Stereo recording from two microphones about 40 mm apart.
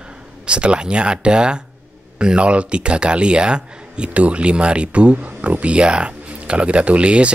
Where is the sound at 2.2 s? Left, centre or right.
Right.